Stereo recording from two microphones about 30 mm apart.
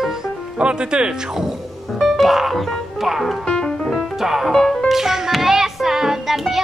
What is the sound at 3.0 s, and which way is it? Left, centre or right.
Speech, centre.